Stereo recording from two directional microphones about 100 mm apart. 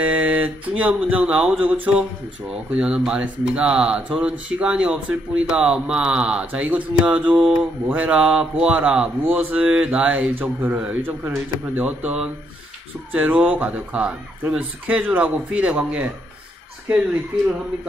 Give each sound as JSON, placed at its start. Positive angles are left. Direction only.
{"t": 0.0, "sound": "speech", "side_deg": -15}